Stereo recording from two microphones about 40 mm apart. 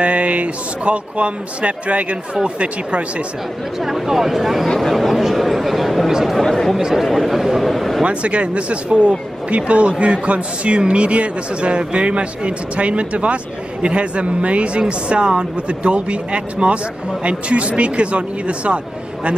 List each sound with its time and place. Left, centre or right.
0.0 s a man's voice: right
3.8 s a man's voice: centre
6.4 s speech: centre
7.0 s a man's voice: centre
8.0 s speech: right